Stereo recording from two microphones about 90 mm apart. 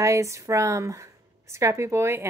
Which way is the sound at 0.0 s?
35° right (ahead or behind).